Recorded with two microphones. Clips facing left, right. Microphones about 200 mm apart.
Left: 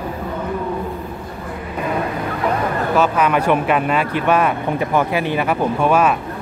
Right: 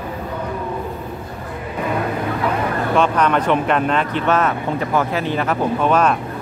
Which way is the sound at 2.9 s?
5° left (ahead or behind).